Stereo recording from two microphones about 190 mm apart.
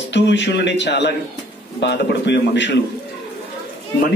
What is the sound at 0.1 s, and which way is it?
A man's voice, 70° left (ahead or behind).